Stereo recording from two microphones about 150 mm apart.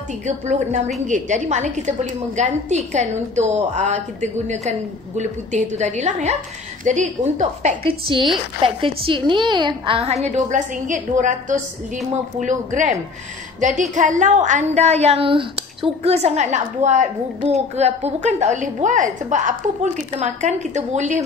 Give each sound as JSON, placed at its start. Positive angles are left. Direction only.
{"t": 0.5, "sound": "a woman's voice", "side_deg": -50}
{"t": 7.8, "sound": "speech", "side_deg": -35}
{"t": 10.2, "sound": "a woman's voice", "side_deg": -55}